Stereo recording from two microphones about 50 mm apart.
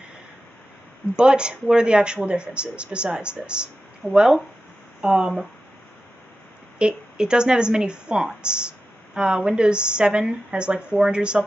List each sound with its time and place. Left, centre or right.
1.1 s a woman's voice: centre
6.8 s a woman's voice: centre